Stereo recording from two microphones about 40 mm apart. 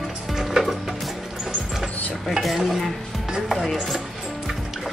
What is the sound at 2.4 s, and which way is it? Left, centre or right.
Stir, centre.